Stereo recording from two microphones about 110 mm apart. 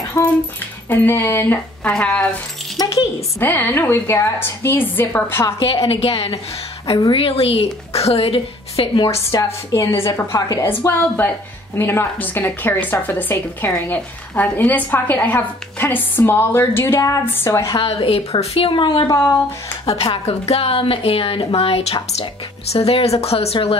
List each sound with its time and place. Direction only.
0.2 s a woman's voice: 35° left (ahead or behind)
0.8 s a woman's voice: 20° left (ahead or behind)
1.9 s speech: 10° left (ahead or behind)
3.3 s a woman's voice: 20° left (ahead or behind)
5.9 s speech: 60° left (ahead or behind)
9.1 s a woman's voice: 30° left (ahead or behind)
17.7 s speech: 60° left (ahead or behind)
19.9 s a woman's voice: 40° left (ahead or behind)
20.2 s speech: 70° left (ahead or behind)